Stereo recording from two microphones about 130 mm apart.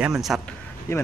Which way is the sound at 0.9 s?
20° left (ahead or behind).